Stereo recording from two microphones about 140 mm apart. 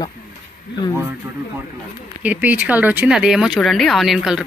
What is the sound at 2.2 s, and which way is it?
Speech, 10° right (ahead or behind).